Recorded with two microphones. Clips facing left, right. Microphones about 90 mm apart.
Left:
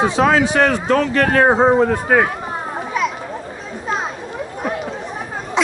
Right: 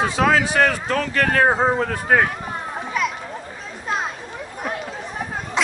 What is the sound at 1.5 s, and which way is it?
Speech, 30° left (ahead or behind).